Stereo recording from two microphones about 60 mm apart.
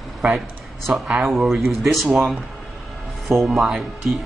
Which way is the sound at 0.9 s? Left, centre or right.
Right.